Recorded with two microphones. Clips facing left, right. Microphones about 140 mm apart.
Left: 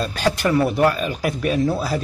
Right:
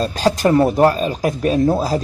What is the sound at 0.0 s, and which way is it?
A man's voice, 35° right (ahead or behind).